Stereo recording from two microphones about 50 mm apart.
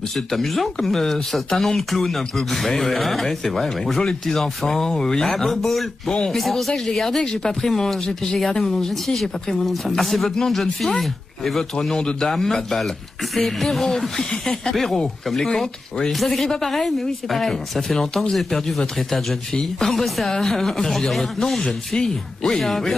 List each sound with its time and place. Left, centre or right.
0.1 s speech: centre
4.0 s speech: centre